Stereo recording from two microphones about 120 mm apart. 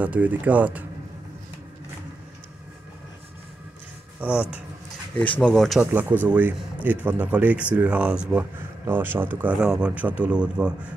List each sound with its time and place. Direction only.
0.0 s speech: 10° right (ahead or behind)
4.2 s speech: 10° right (ahead or behind)
5.1 s speech: 10° left (ahead or behind)
5.8 s speech: 15° right (ahead or behind)